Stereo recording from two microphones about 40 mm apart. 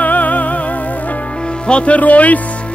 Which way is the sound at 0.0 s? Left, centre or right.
Left.